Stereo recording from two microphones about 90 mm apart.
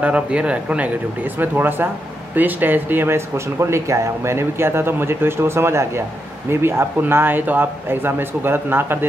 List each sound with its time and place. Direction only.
0.0 s speech: 15° right (ahead or behind)